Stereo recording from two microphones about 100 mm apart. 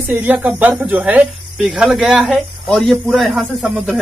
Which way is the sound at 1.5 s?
5° right (ahead or behind).